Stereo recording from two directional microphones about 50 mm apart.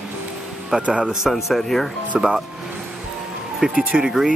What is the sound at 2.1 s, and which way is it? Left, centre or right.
Speech, centre.